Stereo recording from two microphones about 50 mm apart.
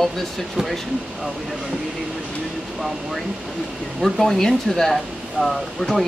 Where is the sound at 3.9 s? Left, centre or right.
Centre.